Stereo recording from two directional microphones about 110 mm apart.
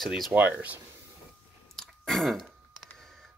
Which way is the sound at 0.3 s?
15° right (ahead or behind).